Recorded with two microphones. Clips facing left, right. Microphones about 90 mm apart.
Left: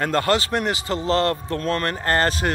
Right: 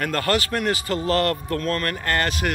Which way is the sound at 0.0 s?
25° left (ahead or behind).